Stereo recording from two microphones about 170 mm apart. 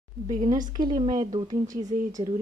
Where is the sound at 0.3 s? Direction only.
45° right (ahead or behind).